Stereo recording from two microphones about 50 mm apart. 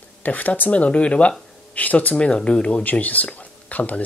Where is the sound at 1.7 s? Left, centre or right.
Left.